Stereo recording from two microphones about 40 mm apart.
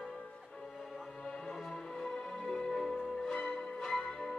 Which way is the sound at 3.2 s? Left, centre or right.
Left.